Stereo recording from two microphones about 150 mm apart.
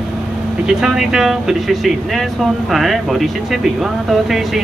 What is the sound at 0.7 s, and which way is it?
Speech, 5° right (ahead or behind).